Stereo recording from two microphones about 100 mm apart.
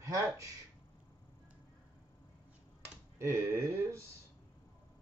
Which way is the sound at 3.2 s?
30° right (ahead or behind).